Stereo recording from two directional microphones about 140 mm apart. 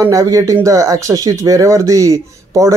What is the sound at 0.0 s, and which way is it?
Speech, 25° right (ahead or behind).